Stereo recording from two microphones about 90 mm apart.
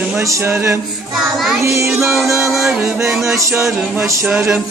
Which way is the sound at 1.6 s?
30° right (ahead or behind).